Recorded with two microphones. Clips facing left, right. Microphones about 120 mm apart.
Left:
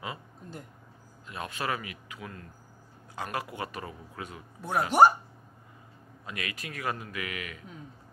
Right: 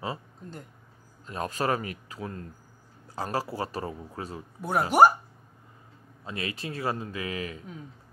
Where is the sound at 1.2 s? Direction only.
40° right (ahead or behind).